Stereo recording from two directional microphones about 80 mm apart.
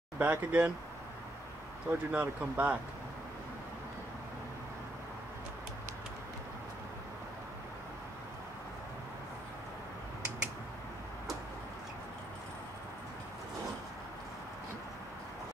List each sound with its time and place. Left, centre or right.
0.2 s speech: right
1.9 s speech: right